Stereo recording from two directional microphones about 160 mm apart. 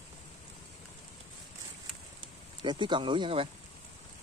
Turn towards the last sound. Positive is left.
turn(degrees=-35)  # may be behind; listen again after turning